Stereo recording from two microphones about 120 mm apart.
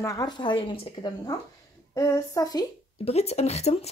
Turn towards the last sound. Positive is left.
turn(degrees=65)  # may be behind; listen again after turning